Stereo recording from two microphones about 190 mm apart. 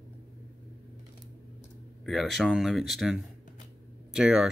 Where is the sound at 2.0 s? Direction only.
Centre (ahead or behind).